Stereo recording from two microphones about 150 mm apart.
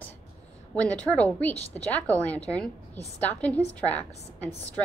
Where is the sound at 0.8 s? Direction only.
10° left (ahead or behind).